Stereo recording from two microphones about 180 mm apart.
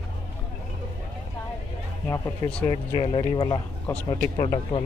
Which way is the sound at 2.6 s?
30° left (ahead or behind).